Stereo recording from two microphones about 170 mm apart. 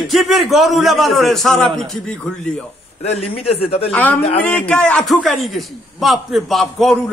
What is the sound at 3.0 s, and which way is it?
Speech, 35° left (ahead or behind).